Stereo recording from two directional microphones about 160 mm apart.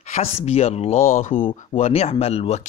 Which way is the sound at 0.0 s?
40° left (ahead or behind).